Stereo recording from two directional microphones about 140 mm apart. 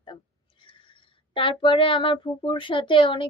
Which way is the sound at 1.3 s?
40° left (ahead or behind).